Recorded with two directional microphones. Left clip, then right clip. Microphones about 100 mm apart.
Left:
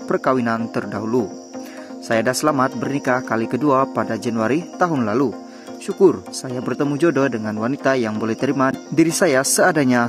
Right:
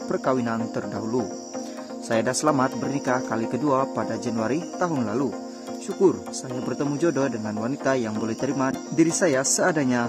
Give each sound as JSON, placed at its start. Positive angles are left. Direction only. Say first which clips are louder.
{"t": 0.1, "sound": "speech", "louder": "left 6 dB", "side_deg": 45}
{"t": 2.0, "sound": "speech", "louder": "left 4 dB", "side_deg": 30}
{"t": 5.9, "sound": "speech", "louder": "left 7 dB", "side_deg": 5}
{"t": 6.7, "sound": "speech", "louder": "left 6 dB", "side_deg": 35}